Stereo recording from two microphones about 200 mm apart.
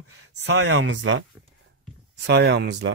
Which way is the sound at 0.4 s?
65° right (ahead or behind).